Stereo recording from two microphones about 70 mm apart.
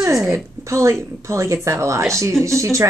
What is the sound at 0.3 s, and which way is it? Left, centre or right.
A woman's voice, right.